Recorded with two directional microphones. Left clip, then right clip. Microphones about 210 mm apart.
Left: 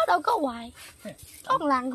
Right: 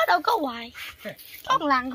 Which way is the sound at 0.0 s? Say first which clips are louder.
Right 2 dB; 55° left (ahead or behind).